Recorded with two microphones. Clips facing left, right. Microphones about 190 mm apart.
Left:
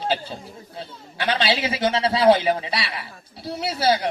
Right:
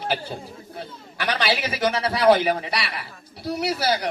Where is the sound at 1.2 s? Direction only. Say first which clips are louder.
Left 2 dB; 25° left (ahead or behind).